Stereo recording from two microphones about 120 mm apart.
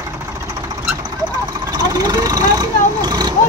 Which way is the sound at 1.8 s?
30° right (ahead or behind).